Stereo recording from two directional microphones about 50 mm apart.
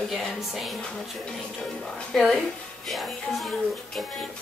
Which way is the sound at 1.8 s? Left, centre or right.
Centre.